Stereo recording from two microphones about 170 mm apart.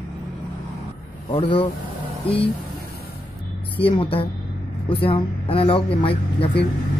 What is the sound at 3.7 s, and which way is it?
Speech, 30° left (ahead or behind).